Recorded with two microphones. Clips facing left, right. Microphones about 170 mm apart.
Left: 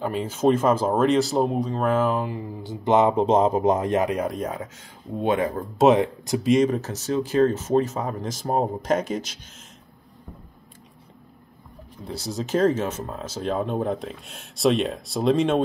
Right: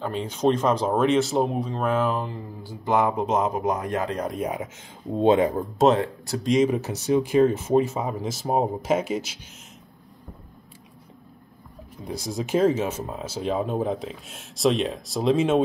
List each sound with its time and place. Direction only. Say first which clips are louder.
0.0 s speech: left 2 dB; 10° left (ahead or behind)
2.6 s speech: left 4 dB; 20° left (ahead or behind)
4.4 s speech: right 1 dB; 10° right (ahead or behind)
5.1 s speech: right 4 dB; 25° right (ahead or behind)
5.9 s speech: left 4 dB; 15° left (ahead or behind)
6.4 s speech: left 1 dB; centre (ahead or behind)
6.7 s speech: right 3 dB; 15° right (ahead or behind)
12.0 s speech: even; 15° right (ahead or behind)